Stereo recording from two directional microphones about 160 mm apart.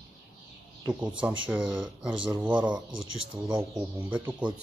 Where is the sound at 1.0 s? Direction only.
5° right (ahead or behind).